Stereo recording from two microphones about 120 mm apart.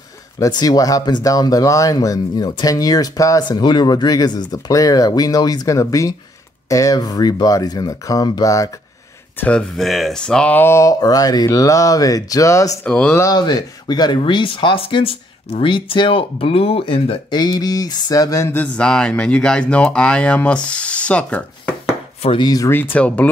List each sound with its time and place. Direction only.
0.4 s speech: 35° left (ahead or behind)
9.4 s speech: 10° left (ahead or behind); by 12.7 s 25° left (ahead or behind)
12.8 s speech: 10° left (ahead or behind)
13.2 s speech: 35° left (ahead or behind)
17.4 s speech: 35° left (ahead or behind)
18.5 s speech: 10° left (ahead or behind)
22.4 s speech: 35° left (ahead or behind)
22.7 s speech: 15° left (ahead or behind)